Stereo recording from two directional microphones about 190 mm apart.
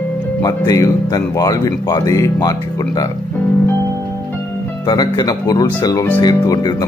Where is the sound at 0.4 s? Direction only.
20° left (ahead or behind).